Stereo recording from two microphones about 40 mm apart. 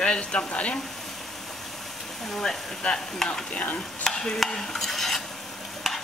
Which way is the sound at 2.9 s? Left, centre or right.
Centre.